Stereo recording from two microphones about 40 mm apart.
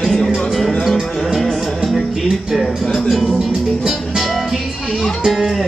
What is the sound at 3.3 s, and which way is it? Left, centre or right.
Music, centre.